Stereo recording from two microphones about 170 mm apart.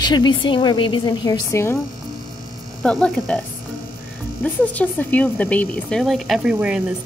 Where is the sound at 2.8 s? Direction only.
5° left (ahead or behind).